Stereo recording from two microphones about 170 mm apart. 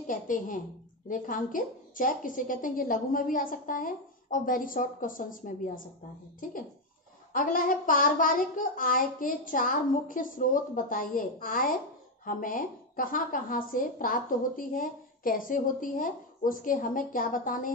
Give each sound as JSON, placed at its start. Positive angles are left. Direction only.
{"t": 0.0, "sound": "a woman's voice", "side_deg": 50}